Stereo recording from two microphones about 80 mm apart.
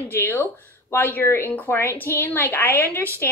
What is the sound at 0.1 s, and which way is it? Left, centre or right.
Speech, left.